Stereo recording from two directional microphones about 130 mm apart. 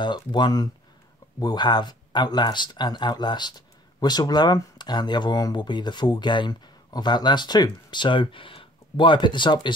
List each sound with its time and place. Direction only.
0.0 s speech: 35° left (ahead or behind)